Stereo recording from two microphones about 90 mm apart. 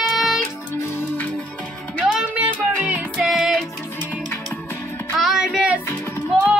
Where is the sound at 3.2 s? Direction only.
5° right (ahead or behind).